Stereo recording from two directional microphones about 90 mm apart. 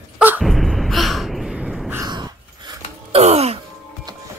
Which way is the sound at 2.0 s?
55° right (ahead or behind).